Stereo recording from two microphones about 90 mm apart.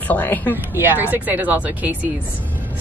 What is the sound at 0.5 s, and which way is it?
Speech, 20° right (ahead or behind).